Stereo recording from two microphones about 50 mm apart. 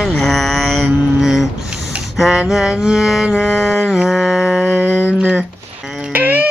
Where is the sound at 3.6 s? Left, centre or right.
Left.